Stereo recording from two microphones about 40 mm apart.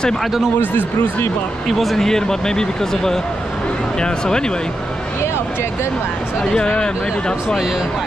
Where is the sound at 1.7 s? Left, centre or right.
Centre.